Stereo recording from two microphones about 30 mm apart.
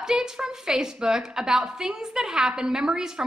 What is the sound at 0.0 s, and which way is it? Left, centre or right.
A woman's voice, right.